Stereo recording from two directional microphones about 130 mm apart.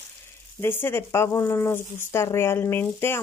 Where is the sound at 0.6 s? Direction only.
15° left (ahead or behind).